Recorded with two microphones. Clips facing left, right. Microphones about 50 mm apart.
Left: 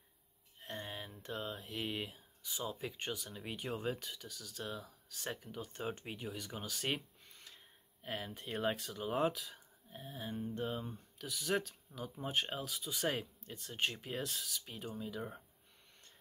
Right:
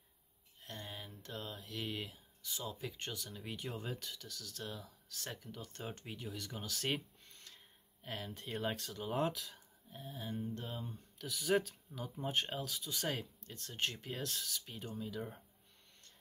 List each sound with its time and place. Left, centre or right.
0.6 s speech: left
11.1 s speech: centre